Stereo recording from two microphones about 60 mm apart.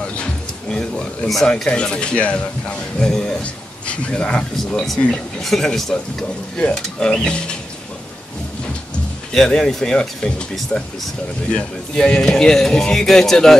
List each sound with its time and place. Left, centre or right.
0.0 s speech: centre
9.3 s speech: centre